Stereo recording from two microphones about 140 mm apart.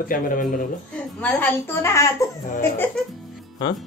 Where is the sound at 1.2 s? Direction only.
10° left (ahead or behind).